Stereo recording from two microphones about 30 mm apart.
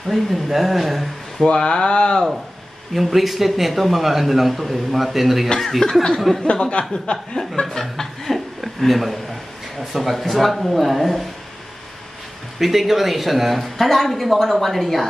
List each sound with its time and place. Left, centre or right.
0.1 s a man's voice: centre
1.4 s speech: left
2.9 s a man's voice: centre
5.6 s speech: centre
6.7 s speech: left
7.8 s chuckle: centre
10.3 s a man's voice: centre
12.5 s a man's voice: centre
13.7 s a man's voice: centre